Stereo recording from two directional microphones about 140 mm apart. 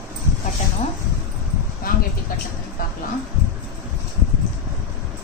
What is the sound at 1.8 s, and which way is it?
Vehicle, 90° left.